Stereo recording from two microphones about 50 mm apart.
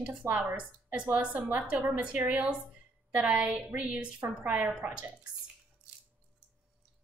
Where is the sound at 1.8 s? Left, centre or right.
Right.